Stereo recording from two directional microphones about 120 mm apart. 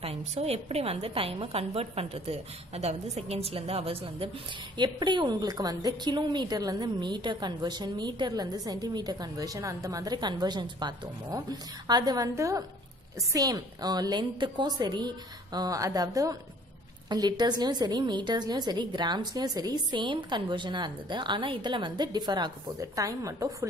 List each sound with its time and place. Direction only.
0.0 s a woman's voice: 60° right (ahead or behind)
4.7 s a woman's voice: 35° right (ahead or behind)